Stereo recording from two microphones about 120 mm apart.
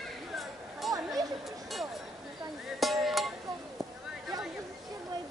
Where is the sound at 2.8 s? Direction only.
Centre (ahead or behind).